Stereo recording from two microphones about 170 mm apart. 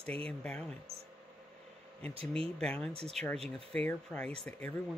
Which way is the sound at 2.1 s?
35° right (ahead or behind).